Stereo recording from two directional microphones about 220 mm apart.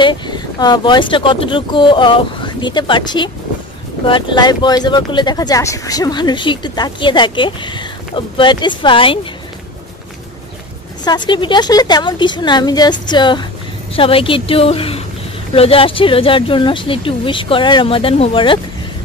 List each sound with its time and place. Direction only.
0.0 s speech: 20° left (ahead or behind)
11.1 s speech: 20° left (ahead or behind)